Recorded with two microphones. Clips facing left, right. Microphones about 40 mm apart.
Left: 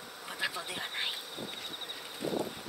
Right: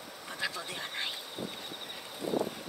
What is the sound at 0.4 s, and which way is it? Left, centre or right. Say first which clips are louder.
Speech: left 1 dB; centre.